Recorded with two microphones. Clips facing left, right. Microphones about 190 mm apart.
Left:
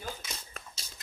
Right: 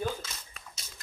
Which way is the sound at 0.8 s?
30° left (ahead or behind).